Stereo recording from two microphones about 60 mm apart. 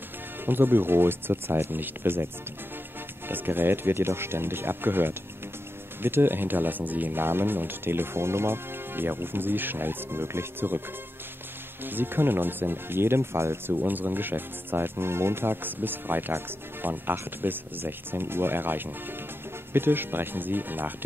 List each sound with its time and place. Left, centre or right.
0.5 s speech: right
3.3 s speech: right
11.8 s speech: right